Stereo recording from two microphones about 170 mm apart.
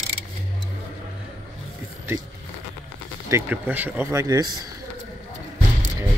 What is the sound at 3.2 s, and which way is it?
Speech, 15° right (ahead or behind).